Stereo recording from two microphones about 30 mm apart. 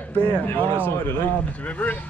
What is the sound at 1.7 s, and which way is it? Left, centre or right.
Speech, left.